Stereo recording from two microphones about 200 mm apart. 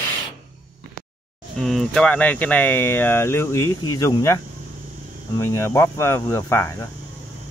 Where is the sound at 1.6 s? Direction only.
Centre (ahead or behind); by 4.4 s 15° left (ahead or behind).